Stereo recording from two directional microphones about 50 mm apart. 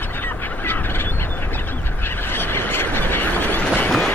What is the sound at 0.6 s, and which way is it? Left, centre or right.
Fowl, left.